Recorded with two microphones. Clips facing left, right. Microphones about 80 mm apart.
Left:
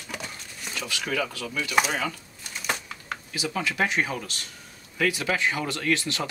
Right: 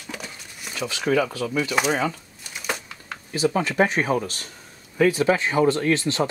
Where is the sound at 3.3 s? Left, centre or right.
Right.